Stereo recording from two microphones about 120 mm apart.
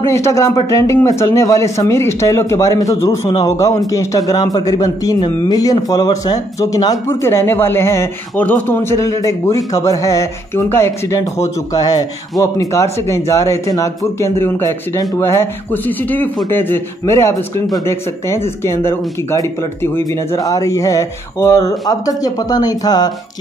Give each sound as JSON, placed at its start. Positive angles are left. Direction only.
{"t": 0.0, "sound": "speech", "side_deg": 25}
{"t": 7.1, "sound": "speech", "side_deg": 20}